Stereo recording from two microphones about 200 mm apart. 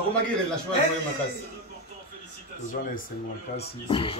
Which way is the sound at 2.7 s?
45° left (ahead or behind).